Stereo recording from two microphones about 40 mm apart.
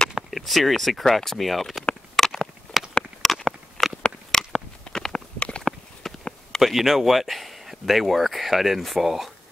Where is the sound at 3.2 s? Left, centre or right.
Centre.